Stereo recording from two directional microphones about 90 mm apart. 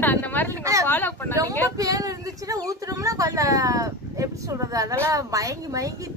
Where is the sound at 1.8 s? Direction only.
40° right (ahead or behind).